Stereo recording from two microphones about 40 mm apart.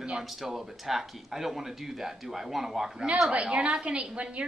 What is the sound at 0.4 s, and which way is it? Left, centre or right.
Speech, centre.